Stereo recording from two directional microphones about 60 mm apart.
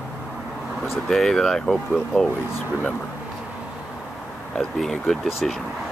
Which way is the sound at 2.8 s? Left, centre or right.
Left.